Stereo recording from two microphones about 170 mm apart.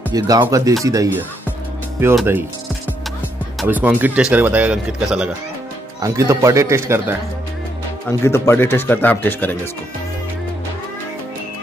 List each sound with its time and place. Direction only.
0.1 s speech: 20° right (ahead or behind)
3.6 s speech: 10° right (ahead or behind)
5.9 s speech: 20° right (ahead or behind)
8.3 s speech: 15° left (ahead or behind)